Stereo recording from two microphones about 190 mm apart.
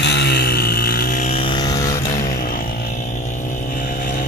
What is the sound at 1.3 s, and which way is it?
Vehicle, 30° left (ahead or behind).